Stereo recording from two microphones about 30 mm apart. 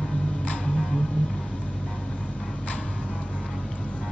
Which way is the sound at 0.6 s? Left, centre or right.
Centre.